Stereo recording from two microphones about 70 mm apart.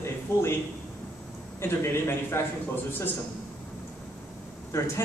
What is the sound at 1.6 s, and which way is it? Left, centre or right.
Speech, left.